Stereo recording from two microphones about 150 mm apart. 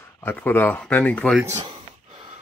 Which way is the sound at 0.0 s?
15° left (ahead or behind).